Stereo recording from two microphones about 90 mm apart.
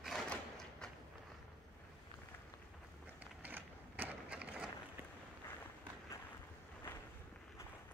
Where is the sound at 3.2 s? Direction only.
20° right (ahead or behind).